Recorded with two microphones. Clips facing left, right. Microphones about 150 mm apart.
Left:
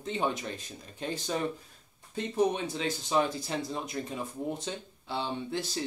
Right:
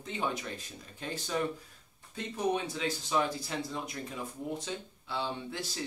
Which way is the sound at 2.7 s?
25° left (ahead or behind).